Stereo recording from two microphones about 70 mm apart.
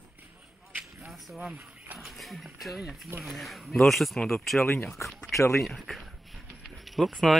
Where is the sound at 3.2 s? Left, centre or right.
Centre.